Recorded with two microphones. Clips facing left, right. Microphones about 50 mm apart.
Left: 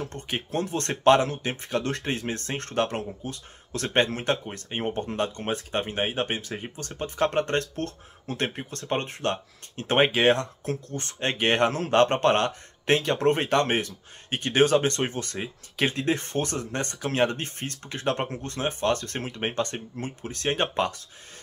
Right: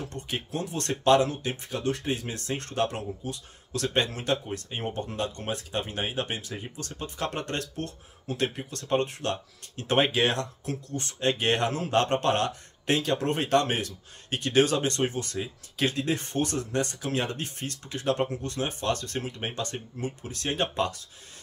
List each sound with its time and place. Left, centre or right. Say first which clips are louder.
0.0 s speech: left 2 dB; left